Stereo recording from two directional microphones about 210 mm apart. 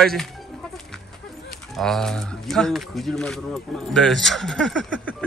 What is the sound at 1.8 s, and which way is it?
Speech, centre (ahead or behind).